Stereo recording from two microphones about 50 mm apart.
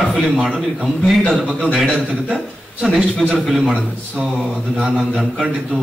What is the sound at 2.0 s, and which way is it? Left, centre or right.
Speech, right.